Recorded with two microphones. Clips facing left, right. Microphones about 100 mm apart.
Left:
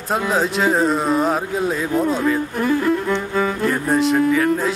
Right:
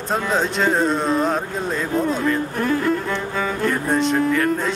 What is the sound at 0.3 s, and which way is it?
Speech, 5° left (ahead or behind).